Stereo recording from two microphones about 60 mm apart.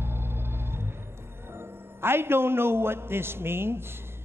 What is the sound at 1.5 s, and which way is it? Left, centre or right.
A man's voice, right.